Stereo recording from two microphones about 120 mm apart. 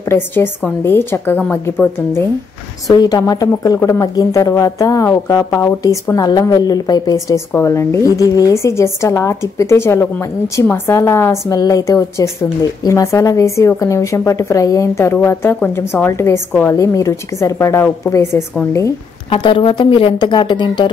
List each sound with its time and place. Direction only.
0.1 s a woman's voice: 20° left (ahead or behind)
2.9 s a woman's voice: 35° left (ahead or behind)
19.3 s speech: 45° left (ahead or behind)